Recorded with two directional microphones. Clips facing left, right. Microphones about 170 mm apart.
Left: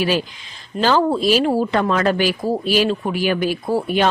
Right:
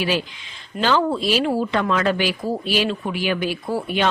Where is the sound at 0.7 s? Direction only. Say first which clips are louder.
Left 3 dB; 40° left (ahead or behind).